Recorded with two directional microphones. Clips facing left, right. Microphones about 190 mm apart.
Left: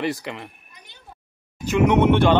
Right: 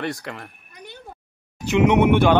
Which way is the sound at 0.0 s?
Centre (ahead or behind).